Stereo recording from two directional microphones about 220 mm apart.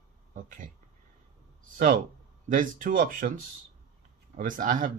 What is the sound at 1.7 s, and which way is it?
Speech, 40° right (ahead or behind).